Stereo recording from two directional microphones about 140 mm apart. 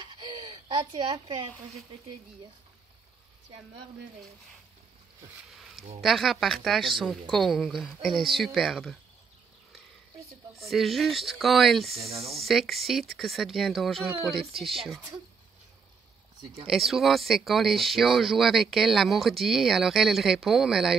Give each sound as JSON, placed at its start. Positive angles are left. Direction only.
{"t": 0.0, "sound": "a sound", "side_deg": -30}
{"t": 5.5, "sound": "a sound", "side_deg": 0}
{"t": 5.9, "sound": "speech", "side_deg": 0}
{"t": 10.6, "sound": "speech", "side_deg": 0}
{"t": 12.1, "sound": "speech", "side_deg": -45}
{"t": 12.4, "sound": "speech", "side_deg": 0}
{"t": 16.6, "sound": "speech", "side_deg": 0}